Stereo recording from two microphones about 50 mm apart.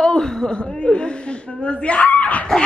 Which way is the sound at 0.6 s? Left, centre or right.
Left.